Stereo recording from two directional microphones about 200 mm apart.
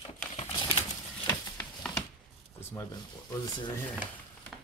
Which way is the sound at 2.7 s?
20° left (ahead or behind).